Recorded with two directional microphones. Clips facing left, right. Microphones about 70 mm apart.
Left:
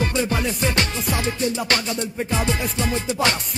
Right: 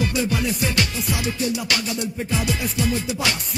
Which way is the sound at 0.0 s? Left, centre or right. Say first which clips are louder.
Left 1 dB; left.